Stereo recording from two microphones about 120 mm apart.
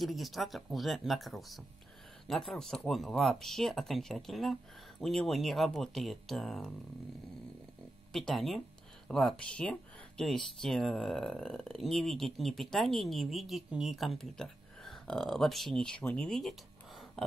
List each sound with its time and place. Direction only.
0.0 s speech: centre (ahead or behind)
8.1 s speech: centre (ahead or behind)